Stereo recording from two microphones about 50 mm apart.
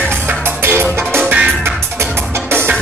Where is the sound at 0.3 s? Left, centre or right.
Right.